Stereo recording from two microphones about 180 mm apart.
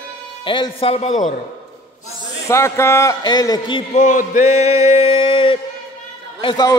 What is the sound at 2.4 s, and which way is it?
A man's voice, 15° left (ahead or behind).